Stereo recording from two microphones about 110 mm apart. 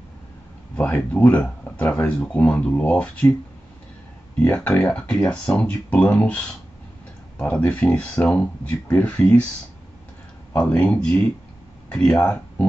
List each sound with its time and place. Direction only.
0.7 s speech: 15° left (ahead or behind)
4.4 s speech: 10° left (ahead or behind)
10.5 s speech: 15° left (ahead or behind)